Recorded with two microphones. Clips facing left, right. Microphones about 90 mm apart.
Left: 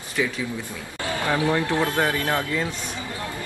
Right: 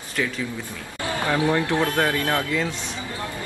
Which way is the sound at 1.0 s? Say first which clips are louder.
Right 1 dB; 20° right (ahead or behind).